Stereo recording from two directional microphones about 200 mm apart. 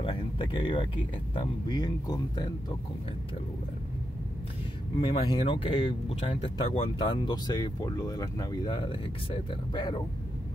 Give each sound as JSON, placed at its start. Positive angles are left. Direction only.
{"t": 0.0, "sound": "a sound", "side_deg": 25}
{"t": 1.3, "sound": "speech", "side_deg": 20}
{"t": 4.9, "sound": "speech", "side_deg": 25}